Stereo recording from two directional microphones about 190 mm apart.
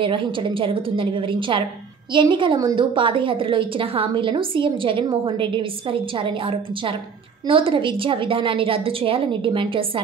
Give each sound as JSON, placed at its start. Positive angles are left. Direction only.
{"t": 0.0, "sound": "a woman's voice", "side_deg": -25}